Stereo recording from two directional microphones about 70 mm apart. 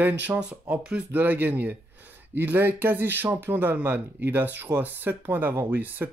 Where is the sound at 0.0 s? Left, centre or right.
Right.